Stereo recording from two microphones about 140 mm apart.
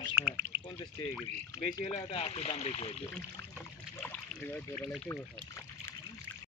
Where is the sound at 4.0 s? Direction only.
10° left (ahead or behind).